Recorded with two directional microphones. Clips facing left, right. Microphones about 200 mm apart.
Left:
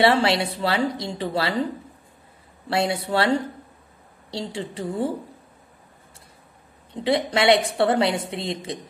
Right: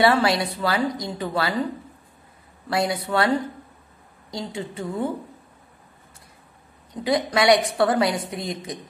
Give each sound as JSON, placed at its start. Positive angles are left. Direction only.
{"t": 0.0, "sound": "a woman's voice", "side_deg": 25}
{"t": 2.7, "sound": "a woman's voice", "side_deg": 25}
{"t": 6.9, "sound": "a woman's voice", "side_deg": 30}